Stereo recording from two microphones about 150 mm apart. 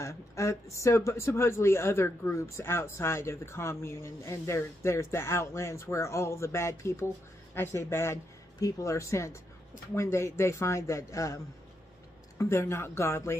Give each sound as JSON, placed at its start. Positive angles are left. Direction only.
{"t": 0.0, "sound": "a man's voice", "side_deg": 20}
{"t": 12.4, "sound": "a man's voice", "side_deg": 15}